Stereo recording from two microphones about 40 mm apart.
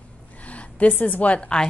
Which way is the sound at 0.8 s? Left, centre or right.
Left.